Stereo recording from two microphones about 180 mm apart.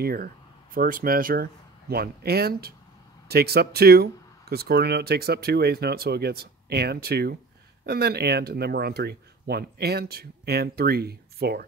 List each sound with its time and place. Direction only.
0.0 s speech: 55° right (ahead or behind)